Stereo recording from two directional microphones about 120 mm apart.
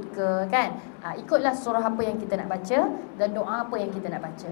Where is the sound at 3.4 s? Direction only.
20° left (ahead or behind).